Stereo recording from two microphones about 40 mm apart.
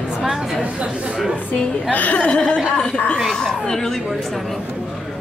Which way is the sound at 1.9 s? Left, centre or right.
Left.